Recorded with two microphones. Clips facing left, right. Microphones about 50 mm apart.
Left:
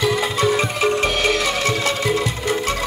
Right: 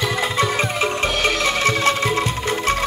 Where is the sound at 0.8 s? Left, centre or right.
Centre.